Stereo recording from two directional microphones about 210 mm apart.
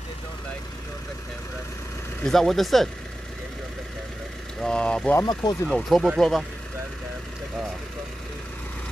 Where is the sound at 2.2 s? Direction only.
Centre (ahead or behind).